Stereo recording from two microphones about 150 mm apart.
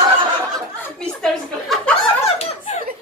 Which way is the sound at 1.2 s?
5° left (ahead or behind).